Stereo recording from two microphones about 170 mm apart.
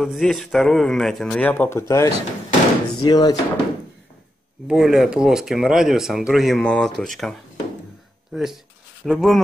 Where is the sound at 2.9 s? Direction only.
25° left (ahead or behind).